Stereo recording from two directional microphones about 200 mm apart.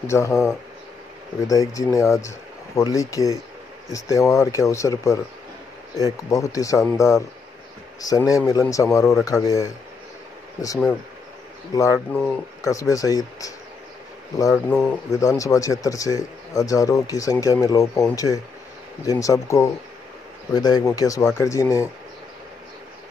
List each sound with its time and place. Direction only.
0.0 s speech: 15° left (ahead or behind)
1.5 s speech: 15° left (ahead or behind)
11.7 s speech: 15° left (ahead or behind)
12.1 s speech: centre (ahead or behind)
12.6 s speech: 15° left (ahead or behind)
14.5 s speech: 5° left (ahead or behind)